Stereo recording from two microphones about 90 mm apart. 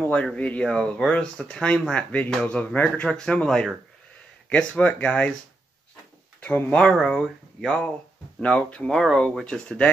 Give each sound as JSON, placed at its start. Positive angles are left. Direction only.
{"t": 0.0, "sound": "speech", "side_deg": 15}
{"t": 6.4, "sound": "speech", "side_deg": 15}
{"t": 6.9, "sound": "speech", "side_deg": 5}